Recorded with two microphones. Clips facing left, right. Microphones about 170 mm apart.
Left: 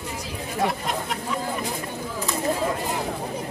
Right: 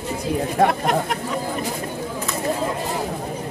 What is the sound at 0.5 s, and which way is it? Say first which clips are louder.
Speech: right 5 dB; 55° right (ahead or behind).